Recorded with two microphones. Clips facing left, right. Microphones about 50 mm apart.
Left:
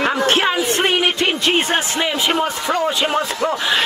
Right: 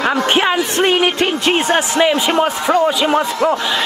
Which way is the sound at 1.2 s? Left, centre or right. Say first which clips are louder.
Right 2 dB; right.